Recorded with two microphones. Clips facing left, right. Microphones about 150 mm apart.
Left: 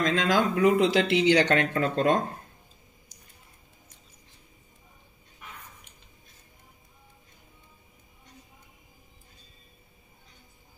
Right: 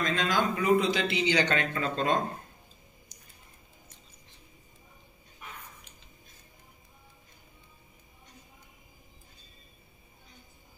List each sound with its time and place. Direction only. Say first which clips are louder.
0.0 s speech: left 4 dB; 90° left; by 2.1 s 60° left (ahead or behind)